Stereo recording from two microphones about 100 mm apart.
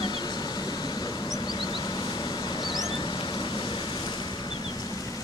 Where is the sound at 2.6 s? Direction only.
45° left (ahead or behind).